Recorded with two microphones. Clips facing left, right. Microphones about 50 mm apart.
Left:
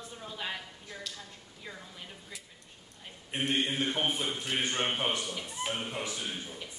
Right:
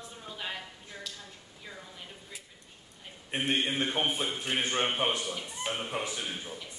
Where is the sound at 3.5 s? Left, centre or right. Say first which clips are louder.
Right 1 dB; right.